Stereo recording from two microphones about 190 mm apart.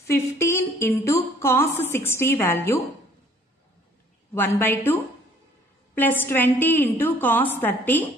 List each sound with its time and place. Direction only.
0.0 s a woman's voice: 15° left (ahead or behind)
4.3 s a woman's voice: 10° left (ahead or behind)